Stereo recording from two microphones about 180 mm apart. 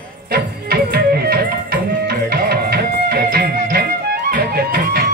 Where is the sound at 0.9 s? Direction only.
55° right (ahead or behind).